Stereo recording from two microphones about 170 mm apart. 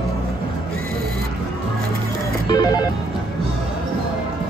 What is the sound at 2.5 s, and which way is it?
Music, 20° left (ahead or behind).